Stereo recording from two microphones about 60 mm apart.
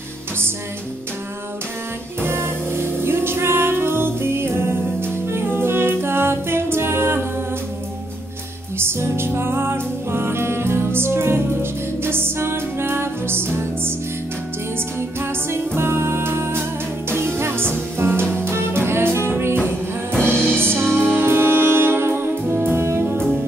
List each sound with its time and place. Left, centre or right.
2.2 s music: right
8.7 s music: right
15.0 s music: right